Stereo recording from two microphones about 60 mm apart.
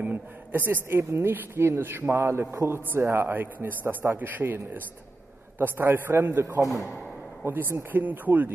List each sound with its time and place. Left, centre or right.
0.0 s a woman's voice: right
7.4 s a woman's voice: right